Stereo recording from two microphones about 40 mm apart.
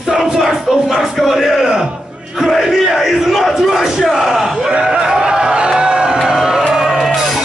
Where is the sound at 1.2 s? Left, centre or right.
Centre.